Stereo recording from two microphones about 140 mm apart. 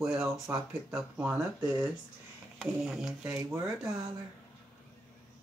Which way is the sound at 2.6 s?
Centre (ahead or behind).